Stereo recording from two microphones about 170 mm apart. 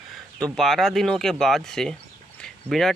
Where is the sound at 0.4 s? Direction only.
Centre (ahead or behind).